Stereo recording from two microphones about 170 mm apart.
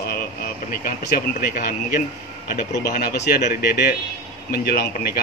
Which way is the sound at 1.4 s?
65° left (ahead or behind).